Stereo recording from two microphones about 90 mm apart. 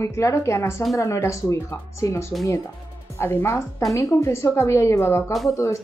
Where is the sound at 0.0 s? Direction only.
35° left (ahead or behind).